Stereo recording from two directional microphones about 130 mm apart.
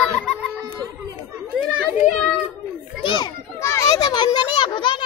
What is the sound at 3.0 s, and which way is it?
Children playing, 40° left (ahead or behind).